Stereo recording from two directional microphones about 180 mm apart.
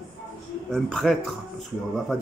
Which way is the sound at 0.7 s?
Centre (ahead or behind).